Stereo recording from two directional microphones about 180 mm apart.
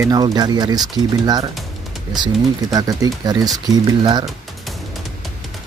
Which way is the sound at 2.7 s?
20° right (ahead or behind).